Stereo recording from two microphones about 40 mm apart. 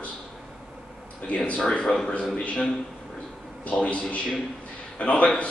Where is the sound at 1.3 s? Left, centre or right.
Left.